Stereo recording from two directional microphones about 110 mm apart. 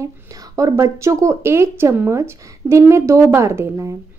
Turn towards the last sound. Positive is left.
turn(degrees=-25)  # may be behind; listen again after turning